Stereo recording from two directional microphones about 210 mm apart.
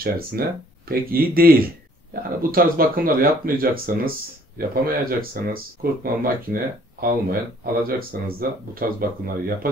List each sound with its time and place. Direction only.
0.0 s speech: 45° right (ahead or behind)